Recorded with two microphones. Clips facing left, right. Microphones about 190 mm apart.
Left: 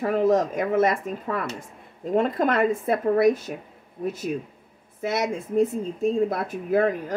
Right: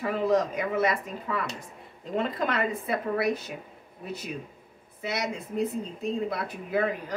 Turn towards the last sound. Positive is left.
turn(degrees=45)  # may be behind; listen again after turning